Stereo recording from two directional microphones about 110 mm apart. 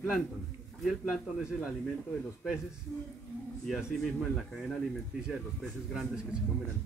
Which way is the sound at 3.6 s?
Centre (ahead or behind).